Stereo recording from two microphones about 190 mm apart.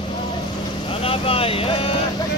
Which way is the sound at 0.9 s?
30° left (ahead or behind).